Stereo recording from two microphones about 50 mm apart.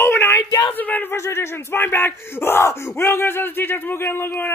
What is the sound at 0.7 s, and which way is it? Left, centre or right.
Speech, left.